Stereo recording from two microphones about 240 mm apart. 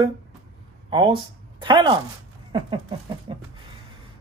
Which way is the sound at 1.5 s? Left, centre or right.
Centre.